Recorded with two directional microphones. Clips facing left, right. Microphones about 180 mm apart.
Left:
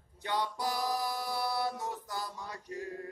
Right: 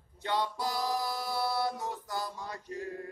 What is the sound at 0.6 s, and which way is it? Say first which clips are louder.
Music: right 1 dB; 20° left (ahead or behind).